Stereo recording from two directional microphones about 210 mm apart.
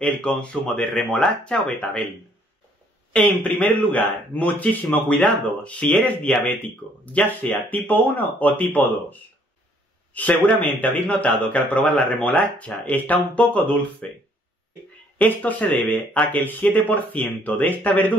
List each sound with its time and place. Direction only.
0.0 s speech: 5° left (ahead or behind)
3.1 s speech: 5° left (ahead or behind)
10.1 s speech: 5° left (ahead or behind)
15.1 s speech: 5° left (ahead or behind)